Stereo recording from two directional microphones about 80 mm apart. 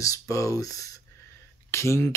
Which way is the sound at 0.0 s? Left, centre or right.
Left.